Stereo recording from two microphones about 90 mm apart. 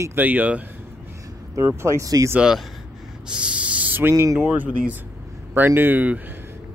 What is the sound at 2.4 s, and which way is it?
Speech, 5° right (ahead or behind).